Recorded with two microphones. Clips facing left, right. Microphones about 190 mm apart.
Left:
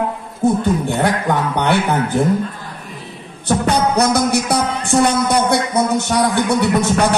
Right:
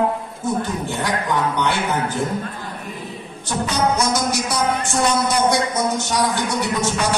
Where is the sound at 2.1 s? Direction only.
60° left (ahead or behind).